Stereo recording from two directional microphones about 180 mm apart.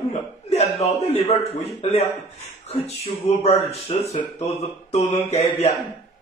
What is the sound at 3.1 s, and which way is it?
Speech, 35° left (ahead or behind).